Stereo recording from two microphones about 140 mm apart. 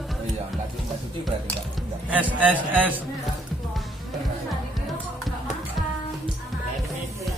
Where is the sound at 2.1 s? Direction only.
10° right (ahead or behind).